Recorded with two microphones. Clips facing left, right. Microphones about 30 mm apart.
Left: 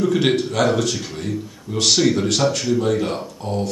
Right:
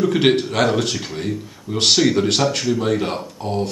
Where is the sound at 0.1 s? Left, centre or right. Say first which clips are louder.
Right 2 dB; right.